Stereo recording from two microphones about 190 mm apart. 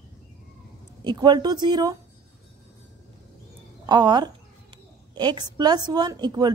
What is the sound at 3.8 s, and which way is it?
A woman's voice, 20° right (ahead or behind).